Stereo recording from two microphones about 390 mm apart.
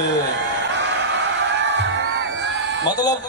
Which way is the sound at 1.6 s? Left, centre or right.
Right.